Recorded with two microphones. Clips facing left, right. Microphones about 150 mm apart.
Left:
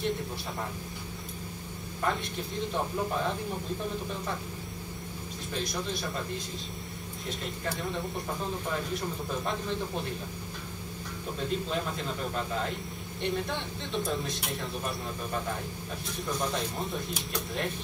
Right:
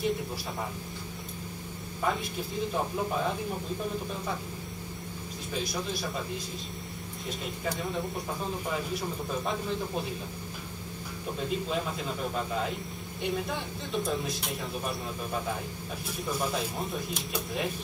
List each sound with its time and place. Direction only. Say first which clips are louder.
2.0 s a man's voice: right 1 dB; 5° right (ahead or behind)
5.5 s a man's voice: right 1 dB; 5° right (ahead or behind)
7.2 s a man's voice: right 1 dB; centre (ahead or behind)
11.3 s a man's voice: even; 5° right (ahead or behind)